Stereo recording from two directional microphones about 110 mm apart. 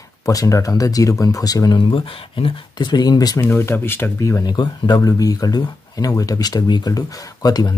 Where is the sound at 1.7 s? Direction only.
50° left (ahead or behind).